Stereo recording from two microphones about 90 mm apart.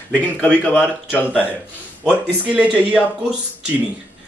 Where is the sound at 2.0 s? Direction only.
15° right (ahead or behind).